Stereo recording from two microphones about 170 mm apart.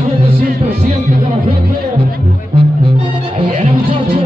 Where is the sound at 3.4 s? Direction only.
35° right (ahead or behind).